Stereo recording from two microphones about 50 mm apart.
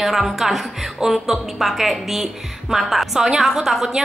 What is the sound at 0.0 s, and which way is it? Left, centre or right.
A woman's voice, centre.